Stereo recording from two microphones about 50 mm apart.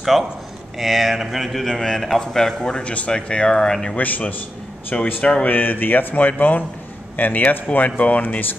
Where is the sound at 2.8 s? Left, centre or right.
Left.